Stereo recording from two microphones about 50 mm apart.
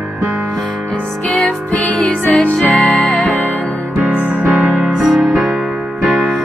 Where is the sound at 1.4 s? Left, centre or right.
Left.